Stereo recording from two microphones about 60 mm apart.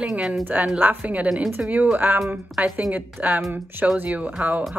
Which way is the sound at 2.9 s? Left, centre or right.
Right.